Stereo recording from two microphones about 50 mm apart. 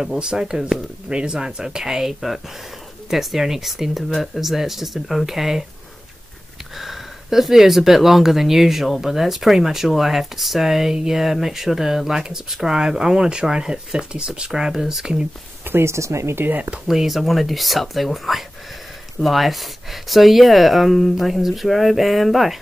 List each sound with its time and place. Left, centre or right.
0.0 s speech: centre
6.8 s speech: centre
15.6 s speech: right
16.8 s speech: centre